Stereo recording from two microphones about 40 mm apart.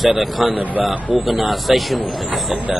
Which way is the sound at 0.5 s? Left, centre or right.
Right.